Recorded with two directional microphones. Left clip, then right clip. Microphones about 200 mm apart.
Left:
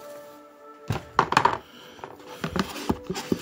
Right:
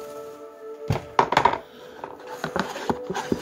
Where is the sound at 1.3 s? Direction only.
45° left (ahead or behind).